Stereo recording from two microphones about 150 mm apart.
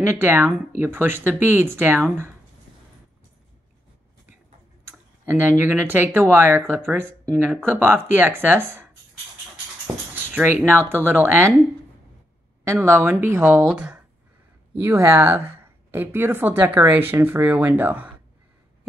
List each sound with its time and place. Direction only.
0.0 s speech: 15° right (ahead or behind)
4.8 s speech: 15° right (ahead or behind)
9.9 s speech: 25° right (ahead or behind)
10.3 s speech: 15° right (ahead or behind)
12.8 s speech: 15° right (ahead or behind)